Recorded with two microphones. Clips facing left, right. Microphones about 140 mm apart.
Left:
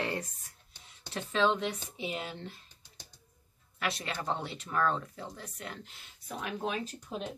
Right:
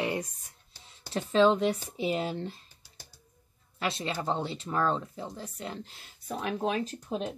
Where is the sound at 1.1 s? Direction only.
35° right (ahead or behind).